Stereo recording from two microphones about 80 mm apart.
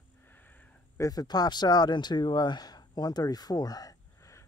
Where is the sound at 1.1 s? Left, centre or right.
Left.